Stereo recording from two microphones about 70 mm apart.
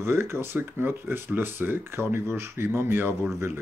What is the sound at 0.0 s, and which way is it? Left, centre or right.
Speech, right.